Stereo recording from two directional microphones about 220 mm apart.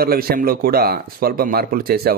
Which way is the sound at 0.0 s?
45° right (ahead or behind).